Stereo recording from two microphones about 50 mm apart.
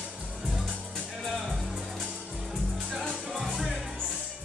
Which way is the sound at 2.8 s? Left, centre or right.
Centre.